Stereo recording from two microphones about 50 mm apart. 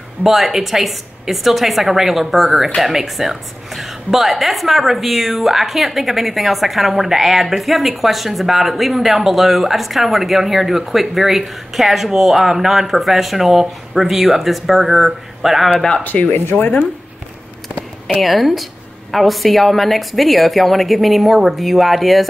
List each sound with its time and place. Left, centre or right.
0.2 s a woman's voice: centre
16.0 s speech: left
18.0 s a woman's voice: centre